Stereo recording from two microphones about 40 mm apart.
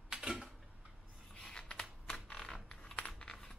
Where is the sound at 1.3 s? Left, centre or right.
Left.